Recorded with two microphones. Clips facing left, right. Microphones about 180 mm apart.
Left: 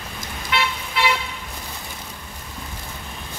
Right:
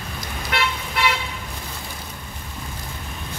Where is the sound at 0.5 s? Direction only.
45° right (ahead or behind).